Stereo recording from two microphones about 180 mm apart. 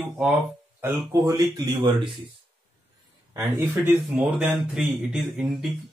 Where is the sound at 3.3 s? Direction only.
20° right (ahead or behind).